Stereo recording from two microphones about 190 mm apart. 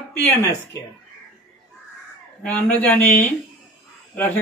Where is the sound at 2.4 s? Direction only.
5° left (ahead or behind).